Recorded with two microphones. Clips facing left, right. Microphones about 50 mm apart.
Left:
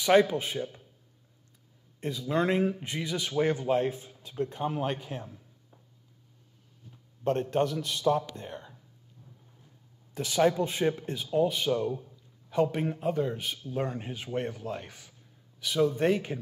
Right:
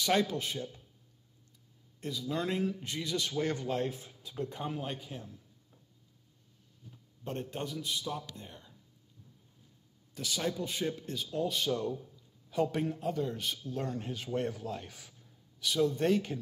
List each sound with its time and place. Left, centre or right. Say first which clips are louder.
0.0 s a man's voice: left 7 dB; left
2.0 s speech: left 6 dB; left
2.8 s a man's voice: left 2 dB; left
7.2 s a man's voice: left 11 dB; left
10.1 s a man's voice: left 10 dB; left; by 15.1 s centre
15.1 s a sound: left 1 dB; centre